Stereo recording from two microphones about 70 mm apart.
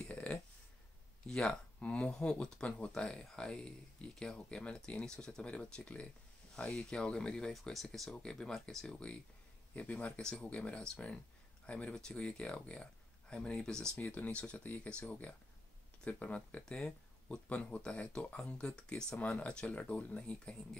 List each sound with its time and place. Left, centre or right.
0.0 s a sound: centre
1.2 s speech: centre
7.5 s speech: centre
13.9 s speech: left